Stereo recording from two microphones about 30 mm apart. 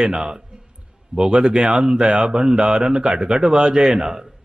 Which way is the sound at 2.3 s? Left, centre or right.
Right.